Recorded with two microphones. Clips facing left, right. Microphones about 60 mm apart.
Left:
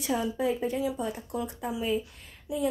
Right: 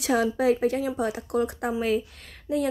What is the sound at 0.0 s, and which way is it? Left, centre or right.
A woman's voice, right.